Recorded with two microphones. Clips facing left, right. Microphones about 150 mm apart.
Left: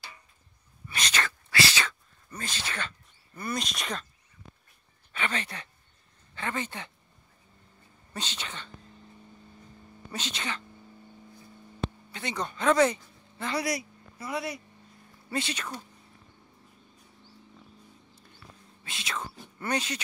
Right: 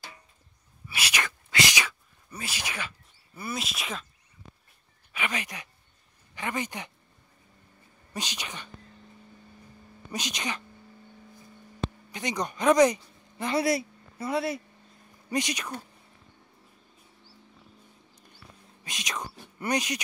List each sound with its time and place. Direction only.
0.8 s whispering: 10° right (ahead or behind)
3.3 s speech: 5° right (ahead or behind)
5.1 s speech: 10° right (ahead or behind)
8.1 s speech: 10° right (ahead or behind)
10.1 s speech: 15° right (ahead or behind)
12.1 s a man's voice: 15° right (ahead or behind)
13.6 s speech: 25° right (ahead or behind)
15.2 s speech: 15° right (ahead or behind)
18.9 s speech: 15° right (ahead or behind)
19.3 s a sound: 15° right (ahead or behind)